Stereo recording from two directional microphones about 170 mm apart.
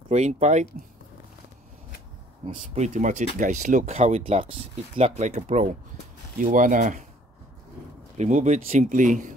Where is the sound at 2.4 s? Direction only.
40° right (ahead or behind).